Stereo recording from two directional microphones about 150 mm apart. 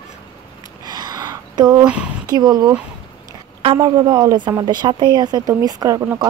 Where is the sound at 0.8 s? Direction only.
25° right (ahead or behind).